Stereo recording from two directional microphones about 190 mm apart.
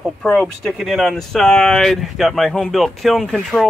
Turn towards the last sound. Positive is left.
turn(degrees=0)  # may be behind; listen again after turning